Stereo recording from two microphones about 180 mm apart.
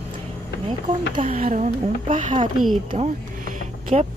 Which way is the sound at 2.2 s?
30° right (ahead or behind).